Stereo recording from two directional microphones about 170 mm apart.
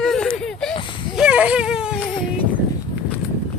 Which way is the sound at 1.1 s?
5° right (ahead or behind).